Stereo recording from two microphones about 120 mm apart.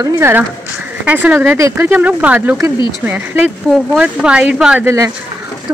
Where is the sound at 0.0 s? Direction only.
20° right (ahead or behind).